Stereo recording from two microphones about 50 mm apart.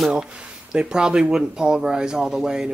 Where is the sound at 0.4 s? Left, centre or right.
Centre.